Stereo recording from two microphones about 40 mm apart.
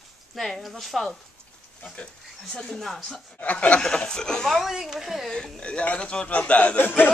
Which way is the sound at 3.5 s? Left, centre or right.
Left.